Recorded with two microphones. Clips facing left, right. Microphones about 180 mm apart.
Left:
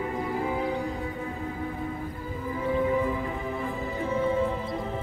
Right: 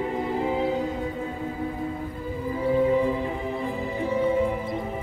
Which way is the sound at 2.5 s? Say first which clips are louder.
Right 4 dB; 30° right (ahead or behind).